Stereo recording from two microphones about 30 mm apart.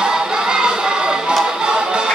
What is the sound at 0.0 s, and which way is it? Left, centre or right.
Music, right.